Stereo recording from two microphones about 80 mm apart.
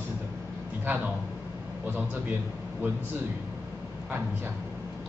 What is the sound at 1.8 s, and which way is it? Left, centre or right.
Speech, right.